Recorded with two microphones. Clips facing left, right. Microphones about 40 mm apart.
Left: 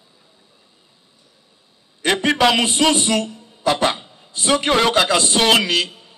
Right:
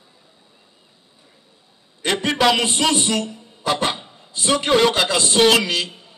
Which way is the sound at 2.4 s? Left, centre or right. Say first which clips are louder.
Left 1 dB; centre.